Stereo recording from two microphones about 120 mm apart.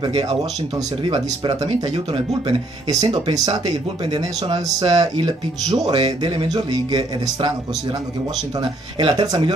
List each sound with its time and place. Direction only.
1.0 s speech: 45° right (ahead or behind)
2.9 s speech: 35° right (ahead or behind)
8.5 s speech: 35° right (ahead or behind)